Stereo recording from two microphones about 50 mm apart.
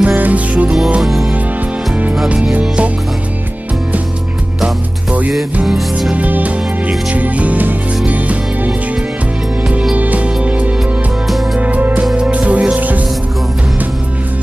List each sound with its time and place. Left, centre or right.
0.0 s music: right
2.2 s speech: right
5.7 s music: centre
6.1 s music: right
9.9 s music: right